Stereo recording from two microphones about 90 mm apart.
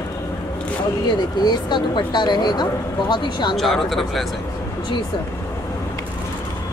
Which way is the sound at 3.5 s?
Centre (ahead or behind).